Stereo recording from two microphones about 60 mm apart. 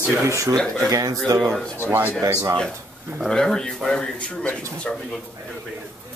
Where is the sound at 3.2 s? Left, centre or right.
Centre.